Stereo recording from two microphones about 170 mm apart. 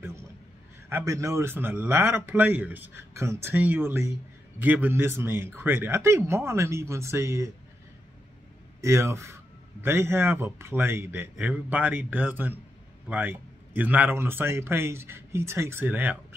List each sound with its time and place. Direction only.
0.8 s speech: 15° right (ahead or behind)
8.8 s speech: 15° right (ahead or behind)